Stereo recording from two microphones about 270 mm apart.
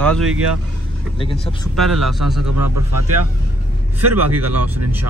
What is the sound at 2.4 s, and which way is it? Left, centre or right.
Speech, right.